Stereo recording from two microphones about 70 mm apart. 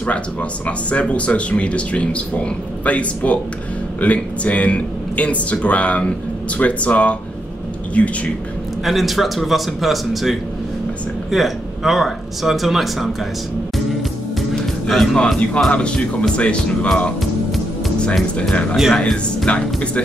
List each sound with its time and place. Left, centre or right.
0.7 s speech: centre
8.8 s speech: centre
15.1 s speech: centre